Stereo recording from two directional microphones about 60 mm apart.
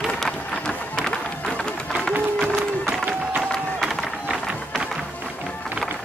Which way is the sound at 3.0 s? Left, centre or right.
Centre.